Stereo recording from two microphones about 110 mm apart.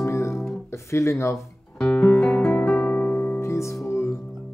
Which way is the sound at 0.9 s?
25° left (ahead or behind).